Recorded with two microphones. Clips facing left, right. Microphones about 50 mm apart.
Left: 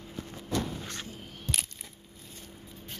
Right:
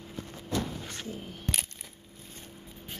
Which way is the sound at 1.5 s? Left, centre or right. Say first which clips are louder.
Right 1 dB; right.